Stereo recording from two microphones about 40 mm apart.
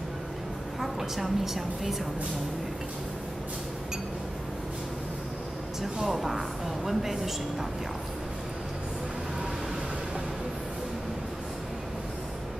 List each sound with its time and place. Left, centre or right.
0.7 s a woman's voice: centre
5.8 s speech: centre